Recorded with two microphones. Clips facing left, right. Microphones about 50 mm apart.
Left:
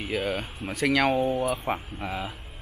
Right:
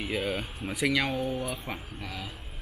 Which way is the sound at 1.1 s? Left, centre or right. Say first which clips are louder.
Left 6 dB; left.